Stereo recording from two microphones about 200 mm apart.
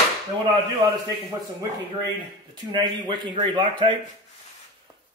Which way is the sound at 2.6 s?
20° right (ahead or behind).